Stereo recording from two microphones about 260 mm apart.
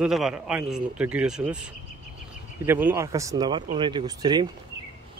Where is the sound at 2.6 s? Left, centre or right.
Centre.